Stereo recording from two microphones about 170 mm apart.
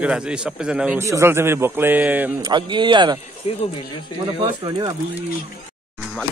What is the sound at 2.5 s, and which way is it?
Speech, 25° right (ahead or behind).